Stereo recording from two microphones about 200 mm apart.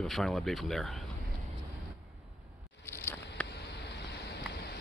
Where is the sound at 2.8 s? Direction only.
10° left (ahead or behind).